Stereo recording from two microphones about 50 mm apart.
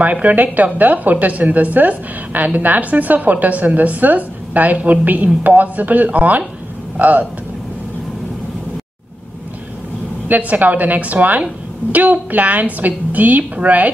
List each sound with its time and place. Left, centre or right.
0.0 s a woman's voice: right
10.2 s a woman's voice: right